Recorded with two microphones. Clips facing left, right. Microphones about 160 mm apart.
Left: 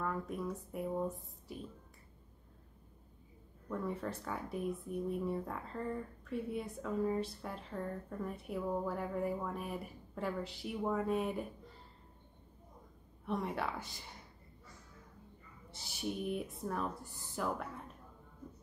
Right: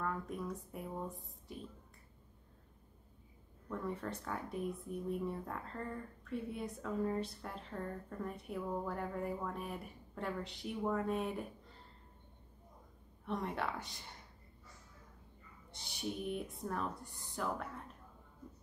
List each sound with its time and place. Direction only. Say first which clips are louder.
0.0 s speech: left 2 dB; centre (ahead or behind)
3.6 s speech: left 2 dB; centre (ahead or behind)
13.2 s speech: left 2 dB; centre (ahead or behind)
15.7 s speech: left 2 dB; centre (ahead or behind)